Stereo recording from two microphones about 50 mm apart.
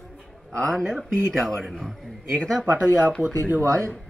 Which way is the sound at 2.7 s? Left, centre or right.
Centre.